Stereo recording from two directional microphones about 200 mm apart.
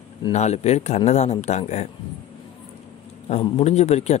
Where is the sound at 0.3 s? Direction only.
35° left (ahead or behind).